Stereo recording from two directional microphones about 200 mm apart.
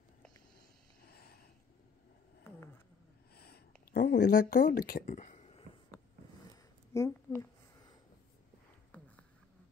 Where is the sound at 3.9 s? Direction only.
55° left (ahead or behind); by 5.6 s 35° left (ahead or behind).